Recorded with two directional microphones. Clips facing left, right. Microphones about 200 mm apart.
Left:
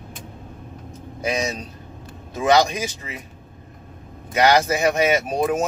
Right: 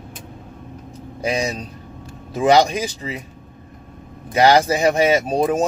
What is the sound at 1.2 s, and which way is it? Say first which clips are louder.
Speech: right 2 dB; 30° right (ahead or behind).